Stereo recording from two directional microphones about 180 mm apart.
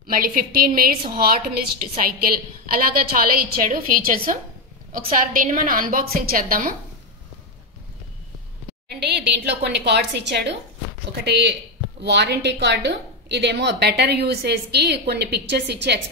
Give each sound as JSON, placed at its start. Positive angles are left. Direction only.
{"t": 0.0, "sound": "a woman's voice", "side_deg": -50}
{"t": 9.0, "sound": "a woman's voice", "side_deg": -65}